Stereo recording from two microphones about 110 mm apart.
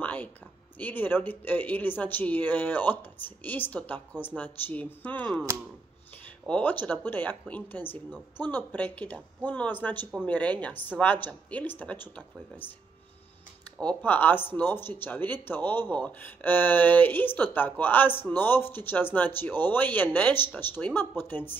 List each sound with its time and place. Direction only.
0.0 s a sound: 15° left (ahead or behind)
0.7 s speech: 15° left (ahead or behind)
5.5 s speech: 25° right (ahead or behind)
6.4 s speech: 15° left (ahead or behind)
13.7 s speech: 10° left (ahead or behind)